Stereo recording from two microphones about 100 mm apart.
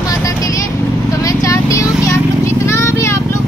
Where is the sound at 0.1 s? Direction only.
35° left (ahead or behind).